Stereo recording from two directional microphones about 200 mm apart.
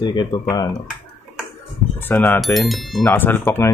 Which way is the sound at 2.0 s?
10° left (ahead or behind).